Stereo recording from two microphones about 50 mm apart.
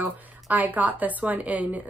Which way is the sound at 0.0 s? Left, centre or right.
Right.